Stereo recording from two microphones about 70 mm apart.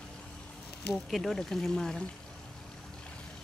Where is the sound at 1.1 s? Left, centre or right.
Centre.